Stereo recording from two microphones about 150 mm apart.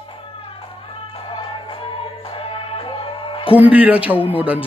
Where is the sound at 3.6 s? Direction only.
10° right (ahead or behind).